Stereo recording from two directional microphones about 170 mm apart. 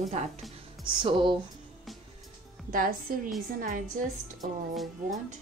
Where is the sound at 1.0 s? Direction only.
30° right (ahead or behind).